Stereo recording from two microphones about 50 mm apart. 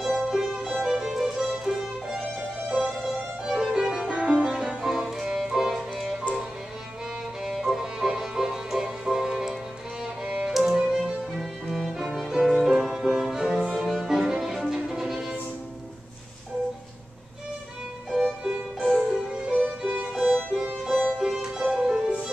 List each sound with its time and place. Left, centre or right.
0.0 s music: centre
4.0 s music: right
7.4 s music: centre
10.2 s violin: centre
10.5 s music: centre
13.6 s music: centre
13.8 s music: centre
18.1 s music: centre
20.1 s violin: centre
20.5 s music: centre